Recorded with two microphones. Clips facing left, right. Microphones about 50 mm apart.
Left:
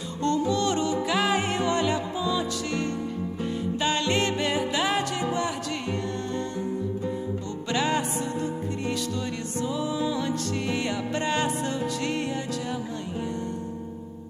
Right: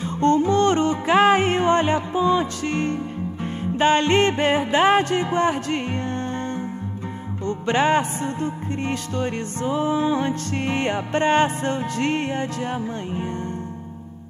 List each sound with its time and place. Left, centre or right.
0.2 s music: right
7.6 s music: right